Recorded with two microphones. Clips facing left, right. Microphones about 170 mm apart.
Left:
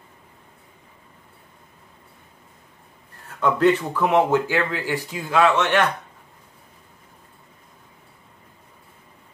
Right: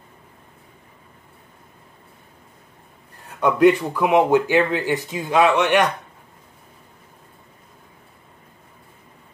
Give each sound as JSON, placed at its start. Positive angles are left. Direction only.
{"t": 3.3, "sound": "speech", "side_deg": -15}